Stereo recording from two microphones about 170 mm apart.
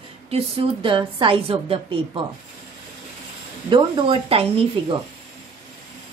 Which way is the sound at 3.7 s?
30° right (ahead or behind).